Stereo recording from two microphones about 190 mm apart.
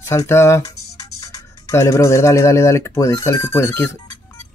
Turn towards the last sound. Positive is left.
turn(degrees=15)  # may be behind; listen again after turning